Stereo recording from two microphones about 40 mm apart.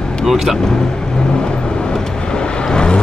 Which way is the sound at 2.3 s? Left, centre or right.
Left.